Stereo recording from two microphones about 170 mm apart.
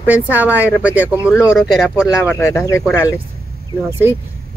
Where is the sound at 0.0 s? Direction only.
10° right (ahead or behind).